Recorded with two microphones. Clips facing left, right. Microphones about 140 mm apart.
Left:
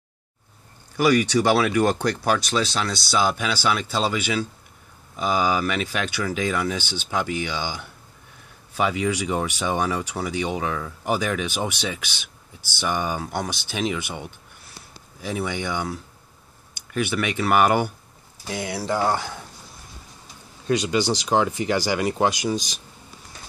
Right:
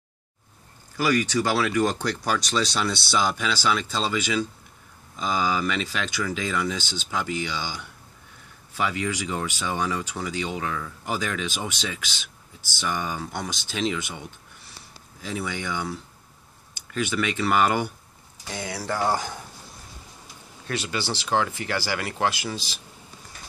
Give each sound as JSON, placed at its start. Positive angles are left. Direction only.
{"t": 0.9, "sound": "speech", "side_deg": 15}
{"t": 20.6, "sound": "speech", "side_deg": 15}